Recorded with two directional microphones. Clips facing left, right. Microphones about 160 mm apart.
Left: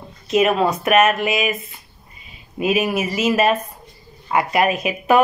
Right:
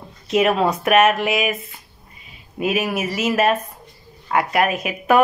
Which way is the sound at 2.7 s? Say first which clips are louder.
Left 3 dB; 15° left (ahead or behind).